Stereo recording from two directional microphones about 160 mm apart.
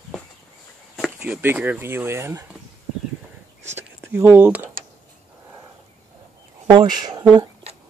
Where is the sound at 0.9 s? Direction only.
5° right (ahead or behind).